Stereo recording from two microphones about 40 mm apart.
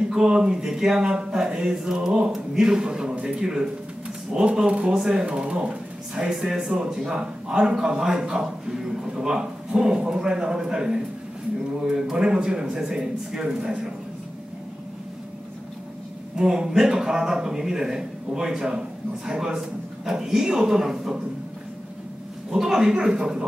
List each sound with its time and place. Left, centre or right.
0.1 s a man's voice: centre
16.3 s a man's voice: centre
22.5 s a man's voice: centre